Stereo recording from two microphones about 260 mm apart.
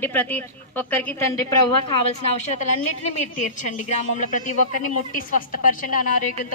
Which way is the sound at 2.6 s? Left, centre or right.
Left.